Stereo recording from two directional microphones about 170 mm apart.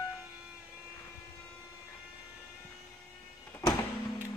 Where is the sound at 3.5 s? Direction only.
15° left (ahead or behind).